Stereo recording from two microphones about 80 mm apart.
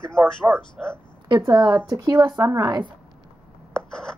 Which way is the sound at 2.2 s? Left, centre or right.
Right.